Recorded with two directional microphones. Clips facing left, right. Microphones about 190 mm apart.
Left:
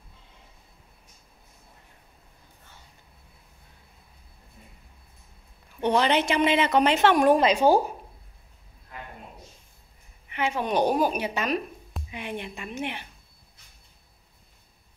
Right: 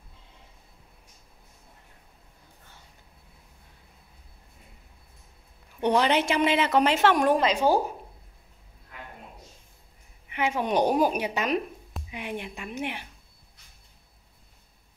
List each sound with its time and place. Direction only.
5.8 s a woman's voice: 10° right (ahead or behind)
7.2 s a woman's voice: 15° left (ahead or behind)
10.3 s a woman's voice: 10° right (ahead or behind)